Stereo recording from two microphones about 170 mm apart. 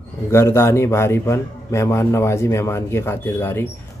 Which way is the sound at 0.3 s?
15° left (ahead or behind).